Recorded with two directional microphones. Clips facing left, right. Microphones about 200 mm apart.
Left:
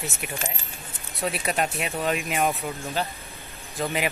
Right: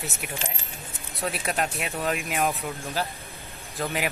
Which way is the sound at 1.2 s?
Centre (ahead or behind).